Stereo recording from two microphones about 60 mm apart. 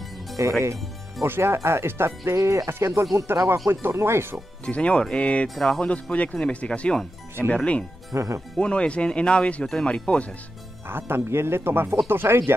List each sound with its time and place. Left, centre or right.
0.4 s speech: right
1.2 s speech: right
2.3 s speech: right
2.7 s speech: right
4.6 s speech: left
5.5 s speech: centre
5.9 s speech: left
8.1 s speech: right
8.5 s speech: centre
10.9 s speech: right